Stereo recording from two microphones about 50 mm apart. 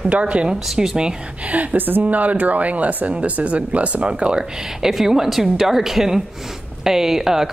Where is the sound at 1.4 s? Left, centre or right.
Right.